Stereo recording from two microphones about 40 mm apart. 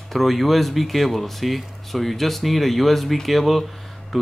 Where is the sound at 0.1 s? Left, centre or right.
Centre.